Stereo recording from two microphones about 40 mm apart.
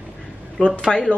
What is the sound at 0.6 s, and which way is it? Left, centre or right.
Speech, left.